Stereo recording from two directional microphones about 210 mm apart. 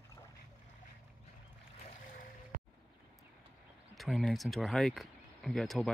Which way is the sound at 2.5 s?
40° right (ahead or behind).